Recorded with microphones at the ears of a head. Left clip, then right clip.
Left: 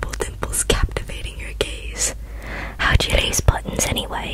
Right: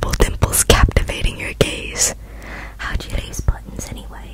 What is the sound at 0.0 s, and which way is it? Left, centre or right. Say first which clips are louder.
Whispering: right 7 dB; right.